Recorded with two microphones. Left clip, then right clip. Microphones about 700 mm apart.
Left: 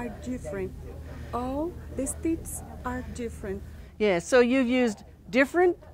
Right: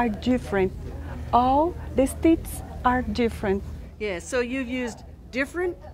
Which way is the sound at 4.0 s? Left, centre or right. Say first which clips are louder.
Left 5 dB; left.